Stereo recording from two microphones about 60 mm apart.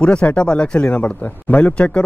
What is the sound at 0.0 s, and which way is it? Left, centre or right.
Speech, centre.